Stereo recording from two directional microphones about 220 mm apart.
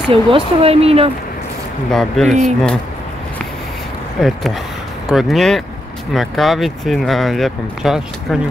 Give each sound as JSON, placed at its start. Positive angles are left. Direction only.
{"t": 0.1, "sound": "speech", "side_deg": -25}
{"t": 1.9, "sound": "speech", "side_deg": 0}
{"t": 4.2, "sound": "speech", "side_deg": 0}